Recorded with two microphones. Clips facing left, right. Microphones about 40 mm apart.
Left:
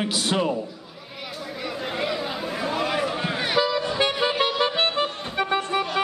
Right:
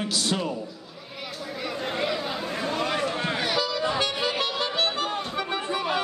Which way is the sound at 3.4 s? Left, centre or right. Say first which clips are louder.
Left 6 dB; left.